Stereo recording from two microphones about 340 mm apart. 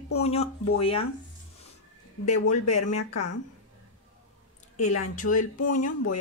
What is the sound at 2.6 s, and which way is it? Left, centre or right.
Speech, left.